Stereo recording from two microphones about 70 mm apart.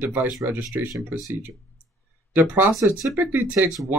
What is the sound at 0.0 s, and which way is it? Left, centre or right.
Speech, right.